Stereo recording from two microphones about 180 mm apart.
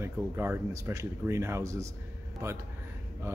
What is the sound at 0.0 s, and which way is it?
Speech, 15° right (ahead or behind).